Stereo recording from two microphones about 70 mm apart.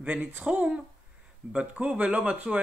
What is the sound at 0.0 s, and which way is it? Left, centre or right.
Speech, right.